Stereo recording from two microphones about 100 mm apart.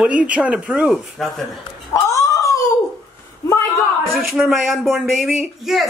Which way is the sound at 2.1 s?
35° left (ahead or behind).